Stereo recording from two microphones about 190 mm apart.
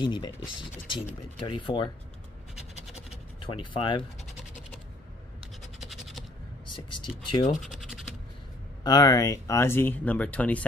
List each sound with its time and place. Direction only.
0.0 s speech: 25° left (ahead or behind)
2.9 s scratch: 25° left (ahead or behind)
5.8 s scratch: centre (ahead or behind)
6.7 s speech: 25° left (ahead or behind)
8.8 s speech: 20° left (ahead or behind)